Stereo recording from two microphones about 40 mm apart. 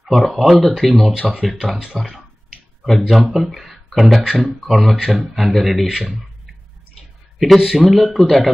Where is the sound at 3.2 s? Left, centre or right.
Centre.